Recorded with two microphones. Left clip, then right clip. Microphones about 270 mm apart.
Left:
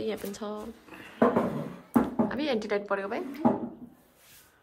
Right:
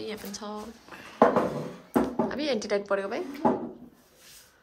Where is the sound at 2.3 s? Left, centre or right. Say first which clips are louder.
Right 1 dB; centre.